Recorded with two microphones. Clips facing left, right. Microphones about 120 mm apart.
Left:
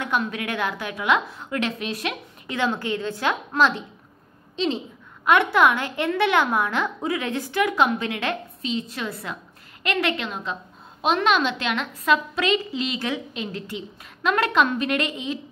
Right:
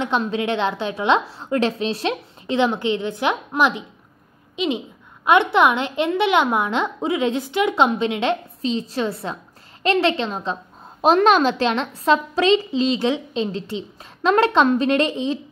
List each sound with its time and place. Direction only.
0.0 s a woman's voice: 25° right (ahead or behind)